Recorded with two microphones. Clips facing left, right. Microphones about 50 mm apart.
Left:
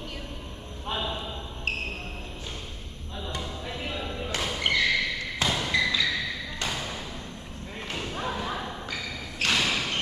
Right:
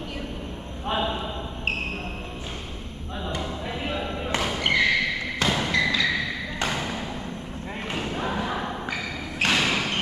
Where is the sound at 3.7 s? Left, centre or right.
Centre.